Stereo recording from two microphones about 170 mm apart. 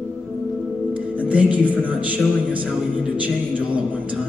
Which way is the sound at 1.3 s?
10° right (ahead or behind).